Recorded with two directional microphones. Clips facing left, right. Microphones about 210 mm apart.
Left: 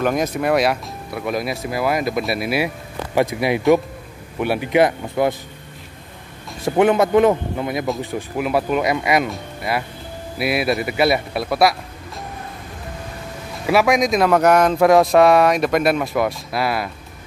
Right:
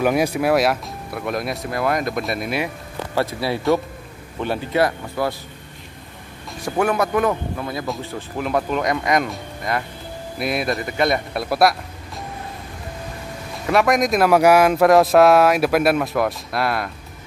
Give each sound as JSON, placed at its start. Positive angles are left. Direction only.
{"t": 0.0, "sound": "speech", "side_deg": -10}
{"t": 6.6, "sound": "speech", "side_deg": 20}
{"t": 13.7, "sound": "speech", "side_deg": 0}